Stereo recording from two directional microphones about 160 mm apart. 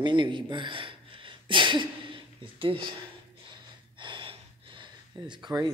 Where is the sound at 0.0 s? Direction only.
30° right (ahead or behind).